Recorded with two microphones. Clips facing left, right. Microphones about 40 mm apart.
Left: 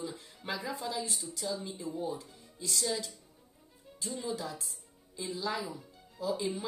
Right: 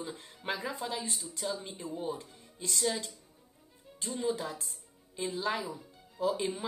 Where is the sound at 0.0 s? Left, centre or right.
Right.